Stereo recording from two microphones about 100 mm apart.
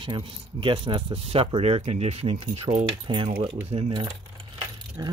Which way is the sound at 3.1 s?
50° right (ahead or behind).